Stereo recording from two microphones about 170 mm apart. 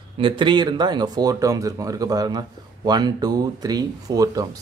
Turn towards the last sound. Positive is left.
turn(degrees=-20)  # may be behind; listen again after turning